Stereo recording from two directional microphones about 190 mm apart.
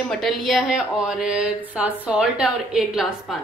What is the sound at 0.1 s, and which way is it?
A woman's voice, centre (ahead or behind).